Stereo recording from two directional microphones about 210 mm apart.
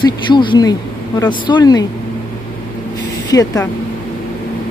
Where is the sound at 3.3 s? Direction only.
15° left (ahead or behind).